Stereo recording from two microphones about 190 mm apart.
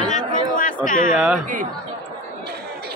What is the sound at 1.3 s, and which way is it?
Speech, 45° right (ahead or behind).